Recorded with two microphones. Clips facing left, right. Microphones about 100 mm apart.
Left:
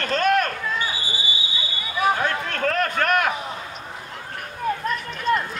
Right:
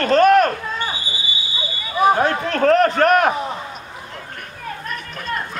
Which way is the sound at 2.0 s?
30° right (ahead or behind).